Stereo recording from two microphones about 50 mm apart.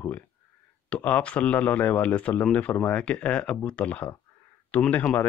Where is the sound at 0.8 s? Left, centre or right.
Left.